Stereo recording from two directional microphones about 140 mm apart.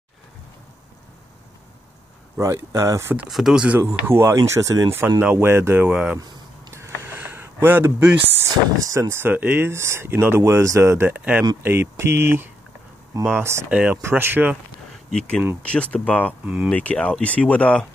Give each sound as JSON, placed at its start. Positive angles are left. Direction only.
{"t": 2.3, "sound": "speech", "side_deg": -20}
{"t": 3.3, "sound": "speech", "side_deg": 0}
{"t": 3.8, "sound": "speech", "side_deg": -20}
{"t": 5.9, "sound": "speech", "side_deg": -5}
{"t": 6.7, "sound": "a sound", "side_deg": -15}
{"t": 8.7, "sound": "speech", "side_deg": -25}
{"t": 13.7, "sound": "speech", "side_deg": -10}
{"t": 15.0, "sound": "speech", "side_deg": 5}